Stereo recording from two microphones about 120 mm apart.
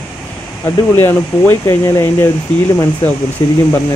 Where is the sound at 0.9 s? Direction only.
20° left (ahead or behind).